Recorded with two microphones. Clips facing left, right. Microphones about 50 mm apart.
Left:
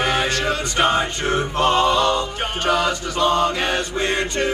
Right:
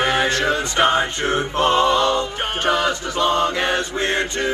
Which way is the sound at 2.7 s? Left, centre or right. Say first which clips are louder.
Even; right.